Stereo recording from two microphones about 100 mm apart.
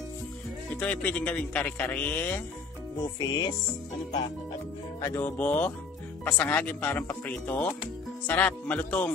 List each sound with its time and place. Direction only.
0.7 s a man's voice: 15° left (ahead or behind)
3.2 s music: 50° left (ahead or behind)
5.0 s music: 30° left (ahead or behind)
5.4 s a man's voice: 15° left (ahead or behind)